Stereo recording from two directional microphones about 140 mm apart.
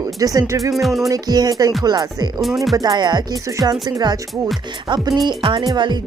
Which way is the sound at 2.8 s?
30° right (ahead or behind).